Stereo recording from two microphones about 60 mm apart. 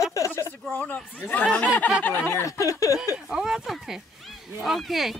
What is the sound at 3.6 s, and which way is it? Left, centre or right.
Speech, centre.